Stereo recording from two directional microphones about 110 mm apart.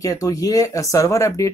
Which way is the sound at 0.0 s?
30° left (ahead or behind).